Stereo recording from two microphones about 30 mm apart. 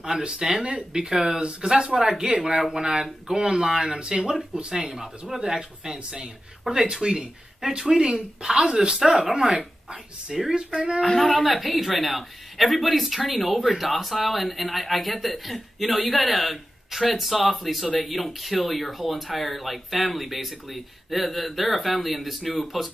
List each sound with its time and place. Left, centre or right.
0.4 s speech: centre
10.5 s speech: right
11.1 s speech: centre